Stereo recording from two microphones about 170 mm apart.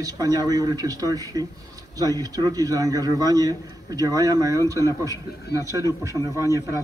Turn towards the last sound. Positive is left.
turn(degrees=-20)  # may be behind; listen again after turning